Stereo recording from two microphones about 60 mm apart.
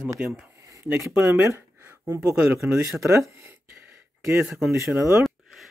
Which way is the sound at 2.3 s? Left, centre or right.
Right.